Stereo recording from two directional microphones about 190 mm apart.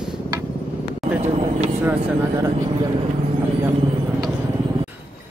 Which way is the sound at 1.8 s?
10° right (ahead or behind).